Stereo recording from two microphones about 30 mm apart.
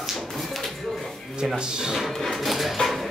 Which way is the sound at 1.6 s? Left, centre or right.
Right.